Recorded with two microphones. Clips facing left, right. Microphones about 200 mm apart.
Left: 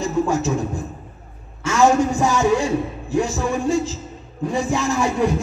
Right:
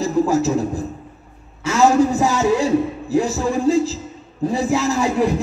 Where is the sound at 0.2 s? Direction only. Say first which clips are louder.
Right 2 dB; 35° right (ahead or behind).